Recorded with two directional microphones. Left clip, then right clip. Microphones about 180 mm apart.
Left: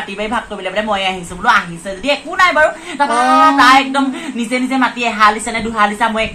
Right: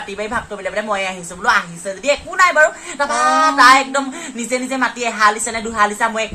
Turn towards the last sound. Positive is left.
turn(degrees=-30)  # may be behind; listen again after turning